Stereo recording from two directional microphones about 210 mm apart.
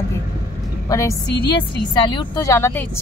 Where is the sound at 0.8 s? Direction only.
15° left (ahead or behind).